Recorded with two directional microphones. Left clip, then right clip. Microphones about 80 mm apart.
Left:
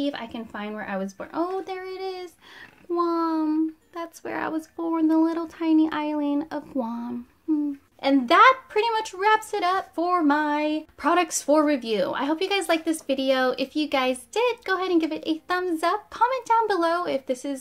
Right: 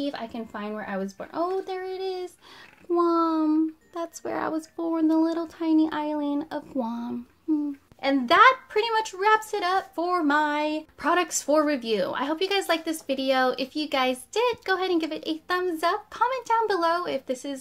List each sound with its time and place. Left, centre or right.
0.2 s speech: centre
2.9 s speech: right; by 6.8 s centre
6.8 s speech: right
8.2 s a woman's voice: centre